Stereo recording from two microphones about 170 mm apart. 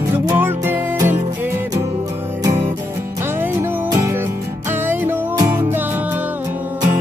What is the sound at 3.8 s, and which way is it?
Music, 20° right (ahead or behind).